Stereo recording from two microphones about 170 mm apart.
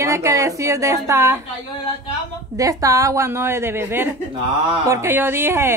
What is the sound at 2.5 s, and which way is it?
A woman's voice, 20° right (ahead or behind).